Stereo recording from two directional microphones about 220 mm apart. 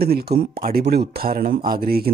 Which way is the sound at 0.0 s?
45° right (ahead or behind).